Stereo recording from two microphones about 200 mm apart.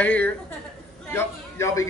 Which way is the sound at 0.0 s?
5° left (ahead or behind).